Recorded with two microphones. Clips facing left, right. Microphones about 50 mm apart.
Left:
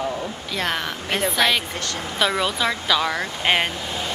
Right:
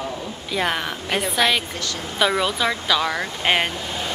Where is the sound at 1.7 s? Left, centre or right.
Left.